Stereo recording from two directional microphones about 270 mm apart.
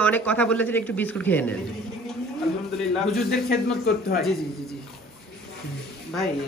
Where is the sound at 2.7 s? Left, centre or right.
Centre.